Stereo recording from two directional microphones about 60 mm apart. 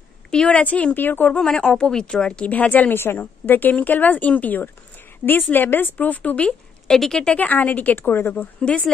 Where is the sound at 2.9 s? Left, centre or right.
Left.